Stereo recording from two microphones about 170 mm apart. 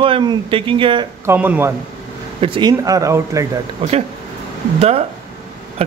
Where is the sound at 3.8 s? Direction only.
35° right (ahead or behind).